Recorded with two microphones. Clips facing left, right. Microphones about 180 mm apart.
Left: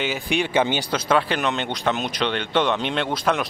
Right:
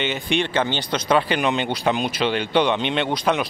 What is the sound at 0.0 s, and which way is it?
Speech, 5° left (ahead or behind).